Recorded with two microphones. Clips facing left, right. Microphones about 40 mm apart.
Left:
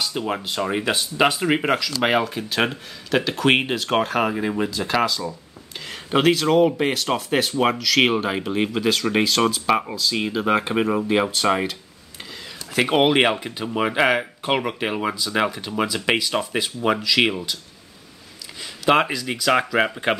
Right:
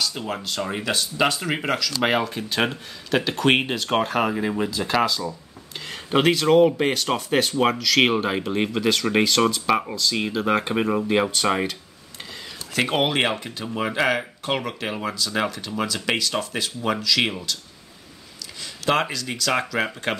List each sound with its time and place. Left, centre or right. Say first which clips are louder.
0.0 s speech: left 2 dB; centre
2.0 s speech: left 2 dB; centre
12.7 s speech: left 4 dB; centre
18.9 s speech: left 4 dB; centre